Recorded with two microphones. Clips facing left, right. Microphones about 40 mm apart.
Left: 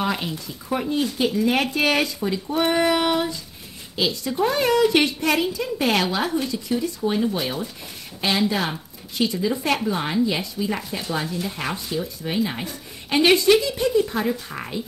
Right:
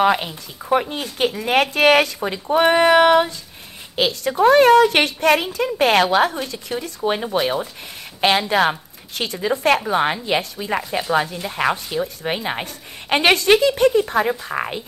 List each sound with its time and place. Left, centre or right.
0.7 s a woman's voice: right